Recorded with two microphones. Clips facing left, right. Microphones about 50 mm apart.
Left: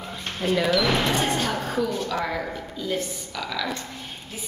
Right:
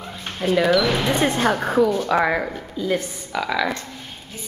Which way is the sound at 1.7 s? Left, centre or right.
Right.